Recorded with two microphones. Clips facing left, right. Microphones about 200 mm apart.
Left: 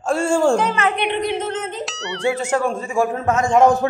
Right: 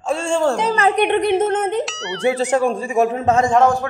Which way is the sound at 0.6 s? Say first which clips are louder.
Right 3 dB; 35° right (ahead or behind).